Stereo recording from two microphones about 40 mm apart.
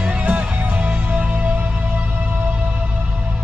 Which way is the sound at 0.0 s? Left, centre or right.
Right.